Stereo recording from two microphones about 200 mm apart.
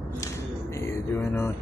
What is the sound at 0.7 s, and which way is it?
Music, 10° left (ahead or behind).